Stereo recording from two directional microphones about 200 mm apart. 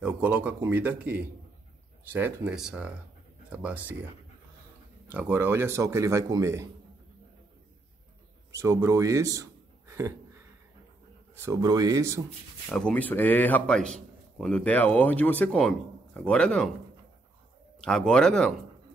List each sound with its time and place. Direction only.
0.0 s speech: 5° right (ahead or behind)
5.1 s speech: 10° right (ahead or behind)
8.5 s a man's voice: 15° right (ahead or behind)
11.3 s speech: 15° right (ahead or behind)
12.7 s speech: 5° left (ahead or behind)
17.7 s speech: 5° left (ahead or behind)